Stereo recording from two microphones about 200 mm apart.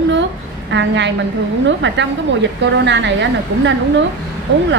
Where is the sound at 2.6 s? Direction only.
60° right (ahead or behind).